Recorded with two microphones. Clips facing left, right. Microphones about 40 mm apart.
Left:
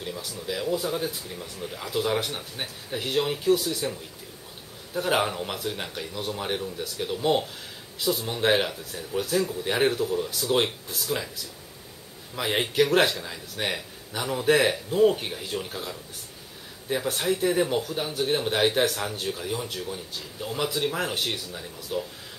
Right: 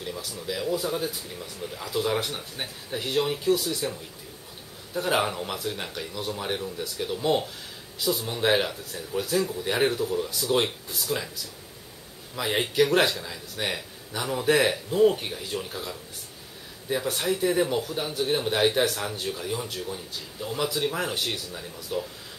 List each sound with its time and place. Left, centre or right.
0.4 s speech: centre
12.4 s speech: centre
16.9 s speech: centre